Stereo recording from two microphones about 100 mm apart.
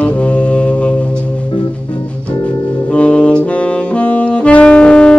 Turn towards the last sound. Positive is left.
turn(degrees=10)  # may be behind; listen again after turning